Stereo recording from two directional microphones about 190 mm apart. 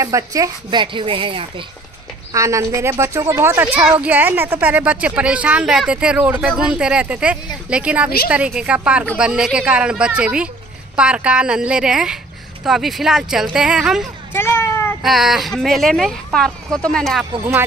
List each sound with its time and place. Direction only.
0.0 s a woman's voice: 15° right (ahead or behind)
2.3 s speech: 15° right (ahead or behind)
14.3 s children playing: 15° left (ahead or behind)
15.0 s speech: centre (ahead or behind)